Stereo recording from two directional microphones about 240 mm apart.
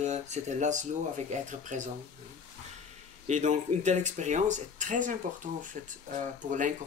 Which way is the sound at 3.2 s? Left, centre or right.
Right.